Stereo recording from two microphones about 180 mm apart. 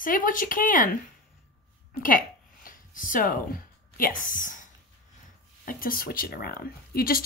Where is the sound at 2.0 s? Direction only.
50° left (ahead or behind).